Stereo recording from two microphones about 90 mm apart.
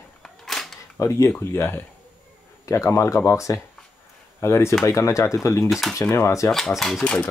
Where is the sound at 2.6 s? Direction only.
35° left (ahead or behind).